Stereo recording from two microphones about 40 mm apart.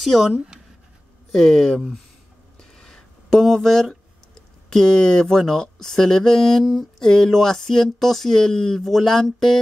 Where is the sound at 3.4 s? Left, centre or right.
Centre.